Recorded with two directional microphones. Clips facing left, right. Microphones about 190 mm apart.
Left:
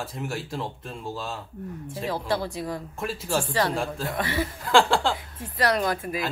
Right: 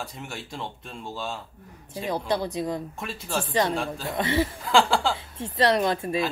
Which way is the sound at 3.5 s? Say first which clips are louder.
Right 4 dB; 20° right (ahead or behind).